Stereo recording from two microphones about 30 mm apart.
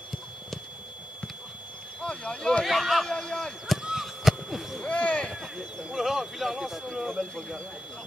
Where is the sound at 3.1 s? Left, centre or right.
Centre.